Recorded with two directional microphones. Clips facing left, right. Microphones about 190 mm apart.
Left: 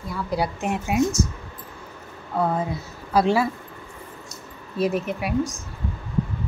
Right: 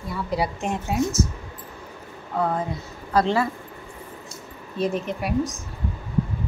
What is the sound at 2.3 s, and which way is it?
Speech, 5° left (ahead or behind).